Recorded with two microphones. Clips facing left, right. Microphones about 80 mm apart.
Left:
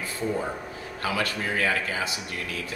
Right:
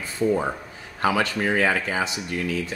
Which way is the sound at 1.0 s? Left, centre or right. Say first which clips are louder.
Right 6 dB; right.